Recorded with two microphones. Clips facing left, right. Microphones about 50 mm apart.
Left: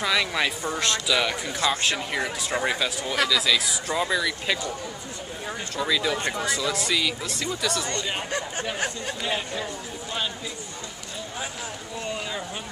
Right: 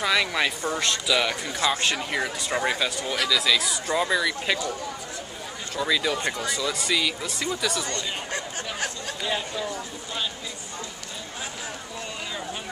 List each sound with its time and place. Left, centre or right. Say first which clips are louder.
0.0 s speech: right 1 dB; centre
5.8 s speech: right 1 dB; centre
7.9 s speech: left 2 dB; left